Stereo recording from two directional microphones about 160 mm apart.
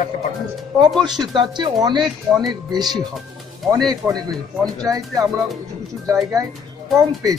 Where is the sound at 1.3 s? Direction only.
25° right (ahead or behind).